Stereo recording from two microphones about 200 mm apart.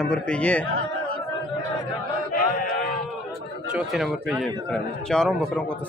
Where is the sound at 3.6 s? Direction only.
Centre (ahead or behind).